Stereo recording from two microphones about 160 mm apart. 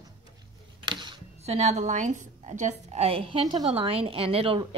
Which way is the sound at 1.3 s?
45° right (ahead or behind).